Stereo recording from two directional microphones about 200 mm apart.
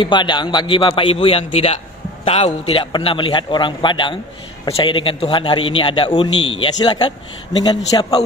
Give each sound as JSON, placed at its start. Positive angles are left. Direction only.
{"t": 0.0, "sound": "a man's voice", "side_deg": 25}